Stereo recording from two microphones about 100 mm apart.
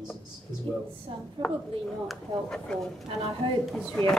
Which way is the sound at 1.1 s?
65° right (ahead or behind).